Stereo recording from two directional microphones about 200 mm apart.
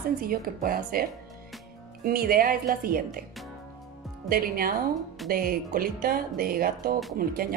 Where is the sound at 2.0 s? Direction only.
50° right (ahead or behind).